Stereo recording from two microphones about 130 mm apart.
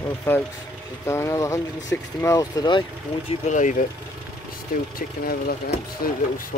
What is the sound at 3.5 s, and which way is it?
Speech, 75° left (ahead or behind).